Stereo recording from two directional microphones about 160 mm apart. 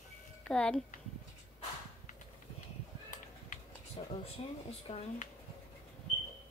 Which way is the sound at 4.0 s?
35° left (ahead or behind).